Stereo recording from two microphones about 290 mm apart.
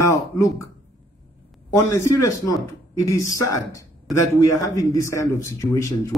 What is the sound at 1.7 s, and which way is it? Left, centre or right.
A man's voice, centre.